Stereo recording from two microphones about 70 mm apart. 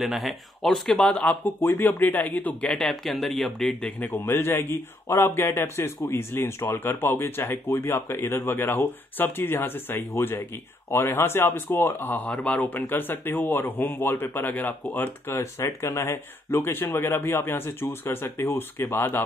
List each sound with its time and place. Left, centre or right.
0.0 s speech: centre; by 2.7 s left
2.7 s speech: centre
4.2 s speech: left
12.3 s speech: centre; by 15.3 s left
15.3 s speech: left